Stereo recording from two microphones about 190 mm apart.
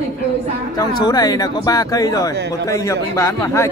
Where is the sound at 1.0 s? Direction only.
20° left (ahead or behind).